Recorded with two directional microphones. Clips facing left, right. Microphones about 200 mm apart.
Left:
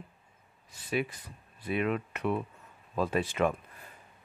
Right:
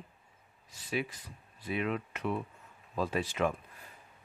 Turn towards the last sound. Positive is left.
turn(degrees=55)  # may be behind; listen again after turning